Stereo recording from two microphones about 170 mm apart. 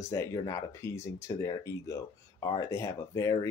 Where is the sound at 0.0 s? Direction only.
20° left (ahead or behind).